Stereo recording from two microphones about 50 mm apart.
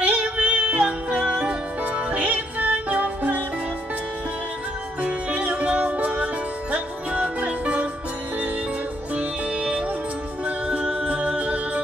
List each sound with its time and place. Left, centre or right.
0.0 s music: right
0.8 s music: centre
5.0 s music: right
9.1 s music: right